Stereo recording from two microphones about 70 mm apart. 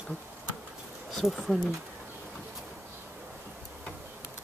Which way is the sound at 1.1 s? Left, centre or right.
Centre.